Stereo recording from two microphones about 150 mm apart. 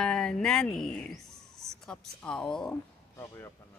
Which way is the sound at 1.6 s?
5° left (ahead or behind).